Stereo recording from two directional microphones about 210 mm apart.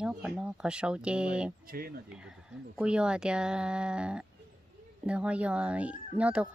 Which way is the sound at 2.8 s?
5° right (ahead or behind).